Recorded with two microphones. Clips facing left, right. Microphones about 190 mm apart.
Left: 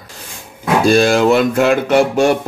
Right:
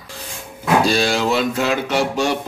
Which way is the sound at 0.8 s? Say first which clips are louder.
Left 7 dB; 50° left (ahead or behind).